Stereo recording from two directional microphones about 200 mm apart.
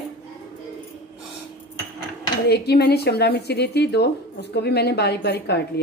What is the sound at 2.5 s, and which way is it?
A woman's voice, 55° left (ahead or behind).